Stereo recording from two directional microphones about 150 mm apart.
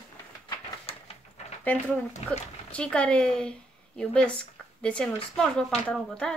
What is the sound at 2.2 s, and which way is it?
Speech, 45° left (ahead or behind).